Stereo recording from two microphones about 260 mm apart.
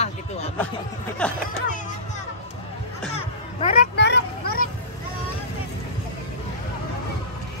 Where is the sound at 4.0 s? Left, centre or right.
Left.